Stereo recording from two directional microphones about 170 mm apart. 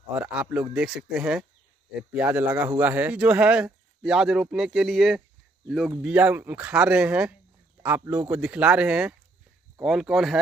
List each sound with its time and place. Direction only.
0.3 s speech: 10° right (ahead or behind)